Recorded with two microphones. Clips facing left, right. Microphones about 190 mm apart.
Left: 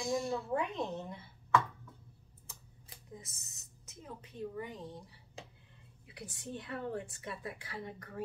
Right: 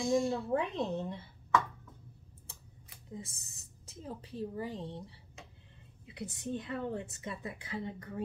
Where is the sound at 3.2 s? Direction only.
30° right (ahead or behind).